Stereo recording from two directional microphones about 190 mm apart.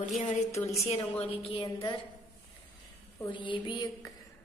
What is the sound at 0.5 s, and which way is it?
Speech, 15° left (ahead or behind).